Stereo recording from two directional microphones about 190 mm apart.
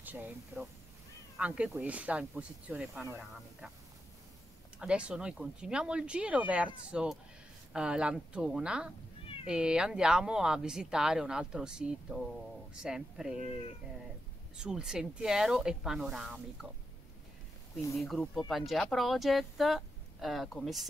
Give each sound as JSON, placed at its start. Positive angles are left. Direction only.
{"t": 0.0, "sound": "speech", "side_deg": -10}
{"t": 4.7, "sound": "speech", "side_deg": -5}
{"t": 9.2, "sound": "cat", "side_deg": 30}
{"t": 9.5, "sound": "speech", "side_deg": -5}
{"t": 14.6, "sound": "speech", "side_deg": -5}
{"t": 18.0, "sound": "speech", "side_deg": 0}